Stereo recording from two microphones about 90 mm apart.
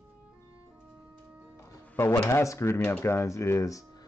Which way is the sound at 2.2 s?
30° left (ahead or behind).